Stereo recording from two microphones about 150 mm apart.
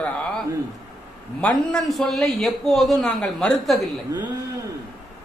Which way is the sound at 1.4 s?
5° left (ahead or behind).